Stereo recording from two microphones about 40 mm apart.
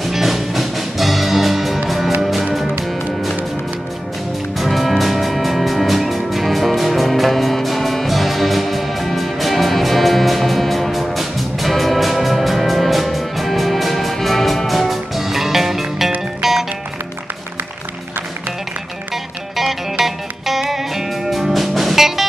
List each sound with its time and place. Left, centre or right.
0.0 s music: centre
4.6 s music: centre
19.5 s music: centre